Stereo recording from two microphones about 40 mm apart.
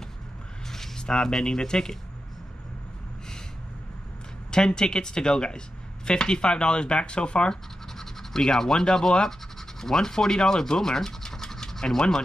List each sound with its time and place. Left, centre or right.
0.7 s speech: centre
4.5 s speech: centre
8.0 s speech: centre